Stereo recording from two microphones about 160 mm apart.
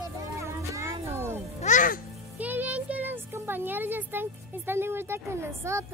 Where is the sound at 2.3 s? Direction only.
10° right (ahead or behind).